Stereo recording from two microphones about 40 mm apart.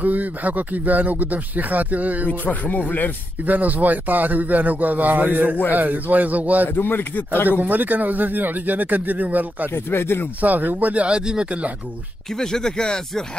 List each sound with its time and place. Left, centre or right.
0.0 s speech: right
2.2 s speech: left
3.4 s speech: right
6.7 s speech: left
7.4 s speech: right
9.8 s speech: left
10.4 s speech: right
11.1 s speech: right
12.4 s speech: centre